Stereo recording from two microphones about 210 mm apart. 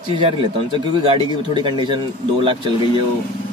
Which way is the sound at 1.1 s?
25° right (ahead or behind).